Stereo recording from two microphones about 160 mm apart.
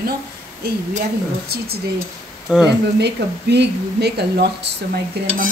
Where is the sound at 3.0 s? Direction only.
90° right.